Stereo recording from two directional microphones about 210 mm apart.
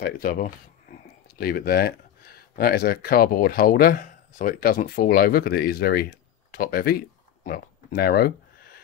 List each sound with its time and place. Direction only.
0.0 s speech: 45° left (ahead or behind)